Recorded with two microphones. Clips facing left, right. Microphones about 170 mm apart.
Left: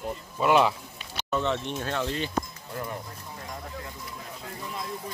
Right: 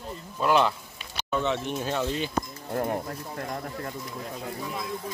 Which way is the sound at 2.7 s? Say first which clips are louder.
Right 7 dB; 50° right (ahead or behind).